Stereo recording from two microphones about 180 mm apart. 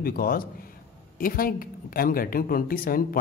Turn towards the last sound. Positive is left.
turn(degrees=55)  # may be behind; listen again after turning